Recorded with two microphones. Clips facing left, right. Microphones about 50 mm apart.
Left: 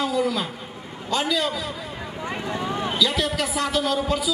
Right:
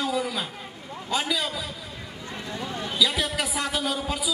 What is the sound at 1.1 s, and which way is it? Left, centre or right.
Speech, centre.